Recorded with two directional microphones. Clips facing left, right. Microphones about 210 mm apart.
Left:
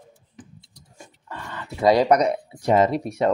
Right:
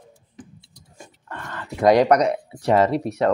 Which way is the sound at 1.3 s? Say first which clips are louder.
Right 1 dB; 10° left (ahead or behind).